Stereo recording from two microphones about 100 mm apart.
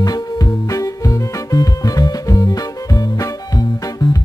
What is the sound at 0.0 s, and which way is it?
Music, 40° left (ahead or behind).